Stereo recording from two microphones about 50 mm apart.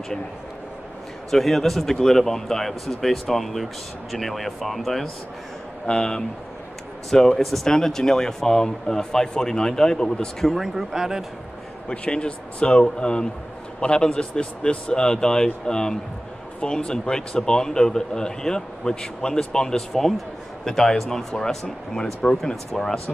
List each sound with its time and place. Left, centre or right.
1.3 s speech: centre
5.9 s a man's voice: centre
10.5 s speech: centre
11.9 s a man's voice: left